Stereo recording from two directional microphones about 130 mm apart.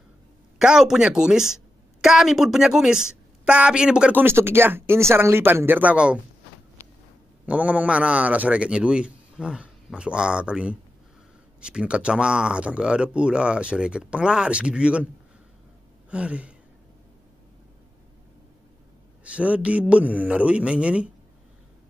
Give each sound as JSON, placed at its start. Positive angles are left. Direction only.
{"t": 0.6, "sound": "speech", "side_deg": -5}
{"t": 7.4, "sound": "speech", "side_deg": -10}
{"t": 16.1, "sound": "speech", "side_deg": -10}
{"t": 19.2, "sound": "speech", "side_deg": -10}